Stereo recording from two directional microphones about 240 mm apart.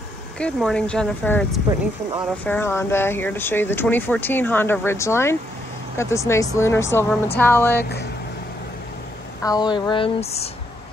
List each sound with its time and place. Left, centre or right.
0.4 s speech: centre
9.4 s speech: centre